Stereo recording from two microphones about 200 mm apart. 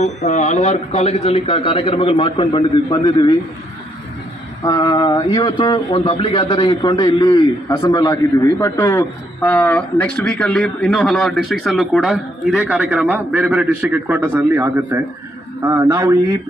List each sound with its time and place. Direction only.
0.0 s a man's voice: 35° left (ahead or behind)
4.6 s a man's voice: 20° left (ahead or behind); by 16.2 s 15° right (ahead or behind)